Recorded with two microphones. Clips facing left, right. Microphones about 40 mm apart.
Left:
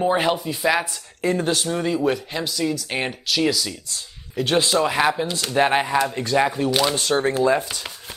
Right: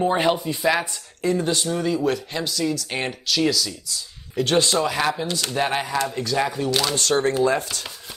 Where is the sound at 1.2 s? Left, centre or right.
Left.